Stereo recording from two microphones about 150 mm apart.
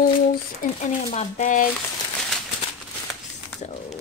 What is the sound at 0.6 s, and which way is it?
Speech, 50° left (ahead or behind).